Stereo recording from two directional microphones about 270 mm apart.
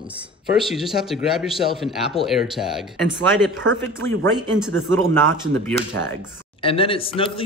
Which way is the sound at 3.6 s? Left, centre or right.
Right.